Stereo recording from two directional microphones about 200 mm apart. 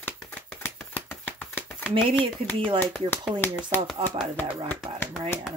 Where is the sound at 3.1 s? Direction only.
5° left (ahead or behind).